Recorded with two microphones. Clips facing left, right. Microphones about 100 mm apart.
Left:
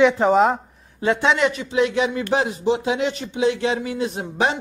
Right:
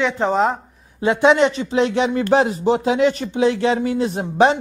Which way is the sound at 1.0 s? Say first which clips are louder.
Right 4 dB; 20° right (ahead or behind).